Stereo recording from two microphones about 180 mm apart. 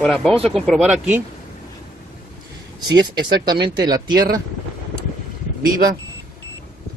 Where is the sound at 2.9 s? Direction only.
25° right (ahead or behind).